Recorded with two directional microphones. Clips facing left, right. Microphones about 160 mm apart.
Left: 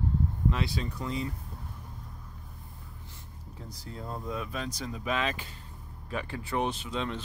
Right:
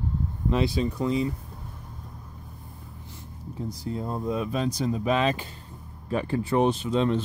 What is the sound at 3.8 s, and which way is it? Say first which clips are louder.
Speech: right 8 dB; 20° right (ahead or behind).